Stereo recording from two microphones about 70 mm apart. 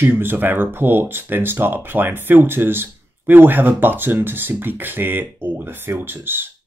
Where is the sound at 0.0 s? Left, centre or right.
Right.